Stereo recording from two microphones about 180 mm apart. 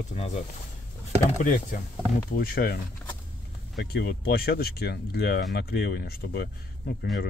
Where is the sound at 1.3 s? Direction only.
45° left (ahead or behind).